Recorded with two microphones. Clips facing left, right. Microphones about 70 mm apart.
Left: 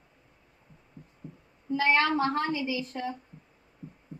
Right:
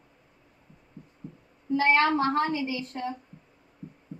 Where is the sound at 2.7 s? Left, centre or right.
Right.